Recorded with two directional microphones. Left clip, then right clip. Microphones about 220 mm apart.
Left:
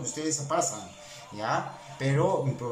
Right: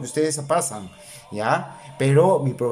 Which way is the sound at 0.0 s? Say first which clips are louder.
Right 9 dB; 45° right (ahead or behind).